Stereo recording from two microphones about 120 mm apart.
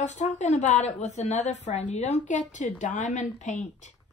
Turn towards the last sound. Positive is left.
turn(degrees=85)